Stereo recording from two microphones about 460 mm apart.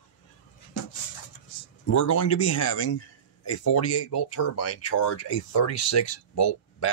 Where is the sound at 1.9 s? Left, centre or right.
Left.